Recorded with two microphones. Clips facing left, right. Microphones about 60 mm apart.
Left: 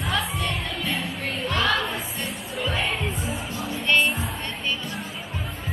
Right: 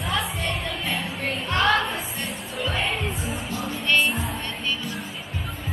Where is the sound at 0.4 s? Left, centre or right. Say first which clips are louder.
Even; right.